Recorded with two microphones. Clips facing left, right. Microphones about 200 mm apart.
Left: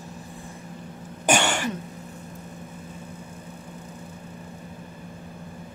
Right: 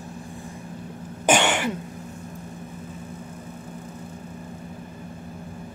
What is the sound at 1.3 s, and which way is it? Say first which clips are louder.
Throat clearing: right 2 dB; 20° right (ahead or behind).